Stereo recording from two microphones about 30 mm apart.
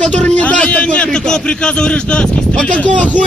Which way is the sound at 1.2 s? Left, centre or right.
Left.